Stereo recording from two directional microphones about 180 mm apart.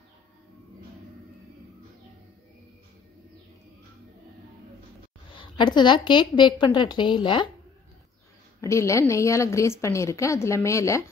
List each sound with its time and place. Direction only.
5.3 s a woman's voice: 25° left (ahead or behind)
8.5 s a woman's voice: 15° left (ahead or behind)